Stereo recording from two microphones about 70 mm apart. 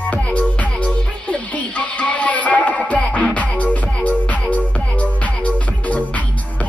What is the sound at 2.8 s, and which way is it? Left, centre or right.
Music, centre.